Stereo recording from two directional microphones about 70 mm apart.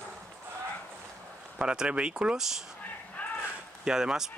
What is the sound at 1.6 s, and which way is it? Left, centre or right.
Speech, centre.